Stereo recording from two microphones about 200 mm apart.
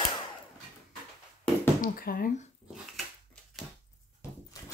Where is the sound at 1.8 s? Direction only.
50° left (ahead or behind).